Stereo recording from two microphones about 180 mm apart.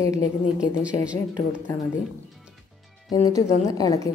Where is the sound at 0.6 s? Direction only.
5° right (ahead or behind).